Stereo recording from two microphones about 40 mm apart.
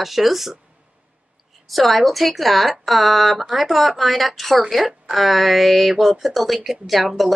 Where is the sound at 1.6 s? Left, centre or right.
Centre.